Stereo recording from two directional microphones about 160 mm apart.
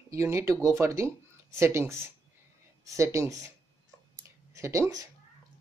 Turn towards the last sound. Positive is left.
turn(degrees=-20)  # may be behind; listen again after turning